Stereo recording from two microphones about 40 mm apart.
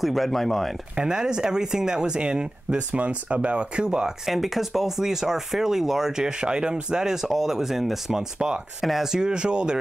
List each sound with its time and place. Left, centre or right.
0.0 s speech: centre
0.9 s speech: centre
2.9 s speech: right
4.3 s speech: centre; by 9.8 s right